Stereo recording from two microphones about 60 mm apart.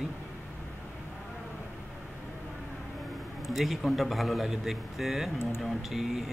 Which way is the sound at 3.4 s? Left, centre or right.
Centre.